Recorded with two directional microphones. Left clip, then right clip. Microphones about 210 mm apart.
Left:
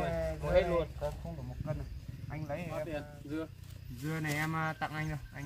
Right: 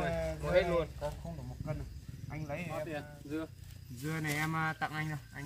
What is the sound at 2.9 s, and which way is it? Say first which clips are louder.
Speech: left 1 dB; 25° left (ahead or behind).